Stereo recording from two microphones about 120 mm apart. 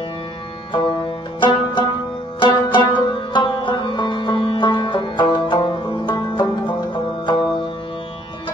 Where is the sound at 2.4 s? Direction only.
40° left (ahead or behind).